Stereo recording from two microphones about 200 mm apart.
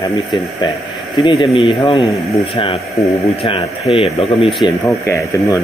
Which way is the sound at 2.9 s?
15° left (ahead or behind).